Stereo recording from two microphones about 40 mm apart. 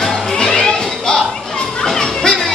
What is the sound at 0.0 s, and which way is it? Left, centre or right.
Music, centre.